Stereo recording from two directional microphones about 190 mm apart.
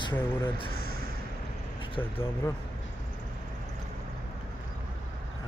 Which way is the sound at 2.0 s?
10° left (ahead or behind).